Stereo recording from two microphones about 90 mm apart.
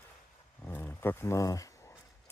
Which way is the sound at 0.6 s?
25° left (ahead or behind).